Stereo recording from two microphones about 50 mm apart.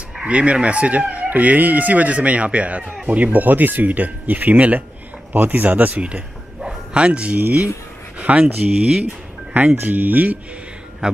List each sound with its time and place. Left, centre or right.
0.2 s speech: right